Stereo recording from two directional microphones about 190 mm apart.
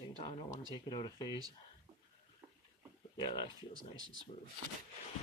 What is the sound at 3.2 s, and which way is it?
Speech, 25° left (ahead or behind).